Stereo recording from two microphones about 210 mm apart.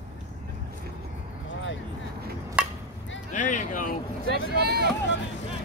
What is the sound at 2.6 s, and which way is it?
Chop, 5° right (ahead or behind).